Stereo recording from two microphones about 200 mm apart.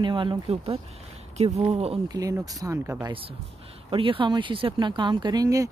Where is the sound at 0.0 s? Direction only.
25° right (ahead or behind).